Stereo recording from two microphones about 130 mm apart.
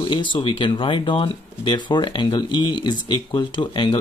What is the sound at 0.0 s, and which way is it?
Speech, 40° left (ahead or behind).